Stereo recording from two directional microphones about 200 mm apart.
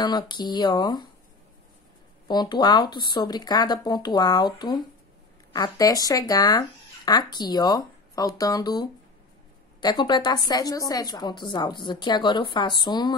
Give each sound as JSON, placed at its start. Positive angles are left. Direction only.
{"t": 0.0, "sound": "a woman's voice", "side_deg": 20}
{"t": 2.2, "sound": "a woman's voice", "side_deg": 20}